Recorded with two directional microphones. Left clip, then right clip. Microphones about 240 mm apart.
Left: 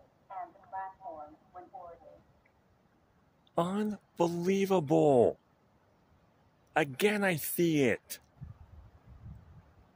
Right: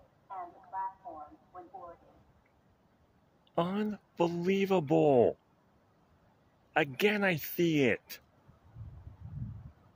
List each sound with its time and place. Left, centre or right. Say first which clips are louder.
0.3 s a sound: even; left
3.5 s speech: left 1 dB; centre
6.7 s speech: even; centre